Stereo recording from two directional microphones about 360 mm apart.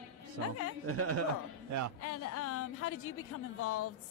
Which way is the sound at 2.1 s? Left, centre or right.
Left.